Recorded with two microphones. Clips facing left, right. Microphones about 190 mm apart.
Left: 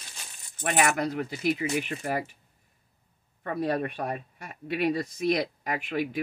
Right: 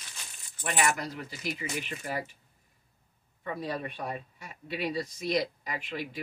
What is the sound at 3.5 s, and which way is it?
Speech, 55° left (ahead or behind).